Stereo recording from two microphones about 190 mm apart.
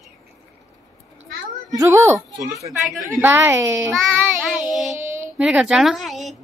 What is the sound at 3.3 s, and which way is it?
Speech, 10° right (ahead or behind).